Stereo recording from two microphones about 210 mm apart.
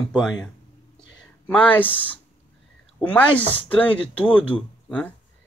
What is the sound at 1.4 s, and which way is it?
Speech, 5° left (ahead or behind).